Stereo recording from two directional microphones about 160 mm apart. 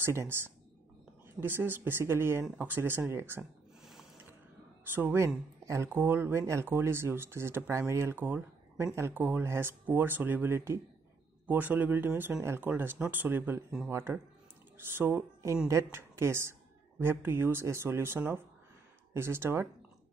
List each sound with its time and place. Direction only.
0.0 s speech: 15° right (ahead or behind)
3.8 s a sound: centre (ahead or behind)
4.8 s speech: 10° right (ahead or behind)